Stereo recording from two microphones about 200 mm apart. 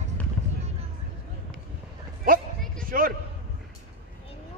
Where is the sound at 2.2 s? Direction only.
45° right (ahead or behind).